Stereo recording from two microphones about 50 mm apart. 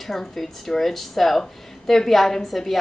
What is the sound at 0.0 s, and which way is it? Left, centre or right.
A woman's voice, centre.